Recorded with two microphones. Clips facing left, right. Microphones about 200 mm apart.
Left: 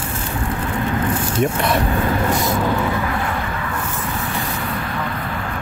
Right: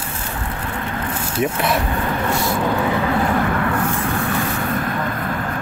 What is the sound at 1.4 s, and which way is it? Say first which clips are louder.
Speech: even; centre (ahead or behind).